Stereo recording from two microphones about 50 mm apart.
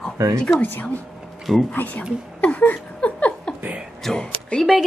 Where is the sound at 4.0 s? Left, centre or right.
Centre.